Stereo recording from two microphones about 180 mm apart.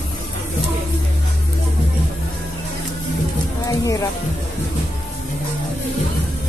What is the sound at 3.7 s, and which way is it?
Speech, 20° left (ahead or behind).